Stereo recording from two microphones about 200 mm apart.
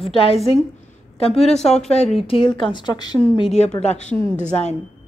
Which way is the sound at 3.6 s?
35° left (ahead or behind).